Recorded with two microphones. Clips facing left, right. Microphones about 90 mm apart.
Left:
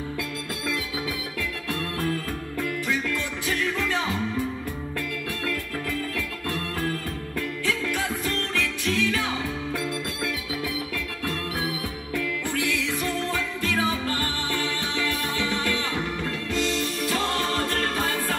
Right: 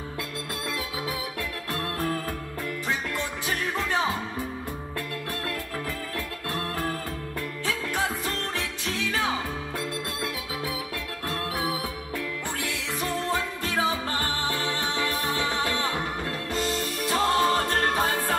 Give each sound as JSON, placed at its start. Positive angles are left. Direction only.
{"t": 3.2, "sound": "music", "side_deg": -35}
{"t": 7.6, "sound": "music", "side_deg": -30}
{"t": 12.5, "sound": "music", "side_deg": -30}
{"t": 17.1, "sound": "music", "side_deg": -25}